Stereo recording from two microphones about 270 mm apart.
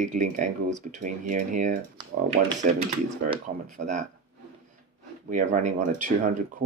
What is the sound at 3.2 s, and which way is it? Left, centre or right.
Speech, right.